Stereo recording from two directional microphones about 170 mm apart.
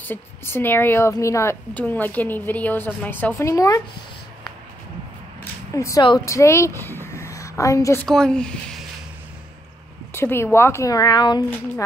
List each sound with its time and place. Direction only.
0.0 s a woman's voice: 10° left (ahead or behind)
5.4 s a sound: 15° left (ahead or behind)
6.0 s a woman's voice: 20° left (ahead or behind)
8.1 s speech: 5° left (ahead or behind)
10.1 s a woman's voice: 15° left (ahead or behind)